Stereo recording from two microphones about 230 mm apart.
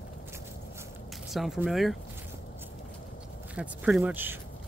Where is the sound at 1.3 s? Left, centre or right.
Centre.